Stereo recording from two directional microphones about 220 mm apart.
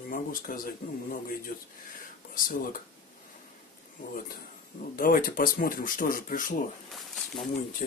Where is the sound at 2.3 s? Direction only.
40° left (ahead or behind).